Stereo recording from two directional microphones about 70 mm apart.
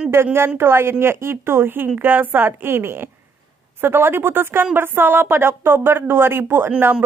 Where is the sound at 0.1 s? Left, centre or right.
Right.